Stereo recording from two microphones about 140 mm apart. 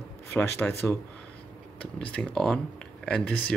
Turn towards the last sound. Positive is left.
turn(degrees=5)  # may be behind; listen again after turning